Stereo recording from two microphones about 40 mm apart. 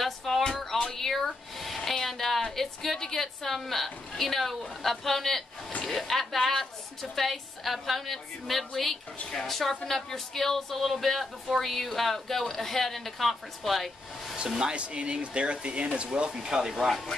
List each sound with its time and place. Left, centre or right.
0.0 s a sound: centre
1.9 s a woman's voice: centre
14.6 s speech: right
16.7 s a woman's voice: centre